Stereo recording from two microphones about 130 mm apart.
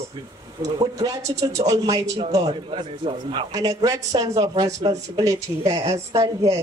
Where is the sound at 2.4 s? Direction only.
45° right (ahead or behind).